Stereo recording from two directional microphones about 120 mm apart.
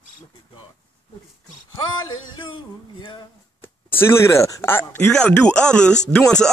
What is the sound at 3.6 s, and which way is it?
Speech, 20° left (ahead or behind).